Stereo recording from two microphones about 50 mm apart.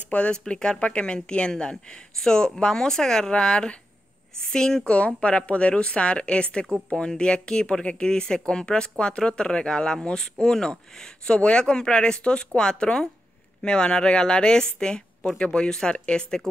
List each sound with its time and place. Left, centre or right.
0.1 s speech: left
4.9 s a woman's voice: left